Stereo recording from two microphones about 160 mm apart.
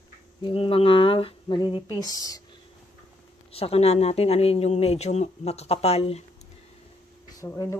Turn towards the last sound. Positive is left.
turn(degrees=20)  # may be behind; listen again after turning